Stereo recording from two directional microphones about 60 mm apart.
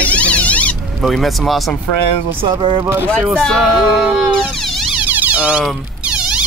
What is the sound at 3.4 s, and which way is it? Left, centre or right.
Speech, centre.